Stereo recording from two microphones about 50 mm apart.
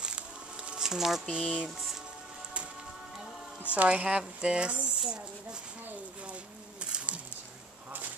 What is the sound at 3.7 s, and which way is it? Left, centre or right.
Speech, right.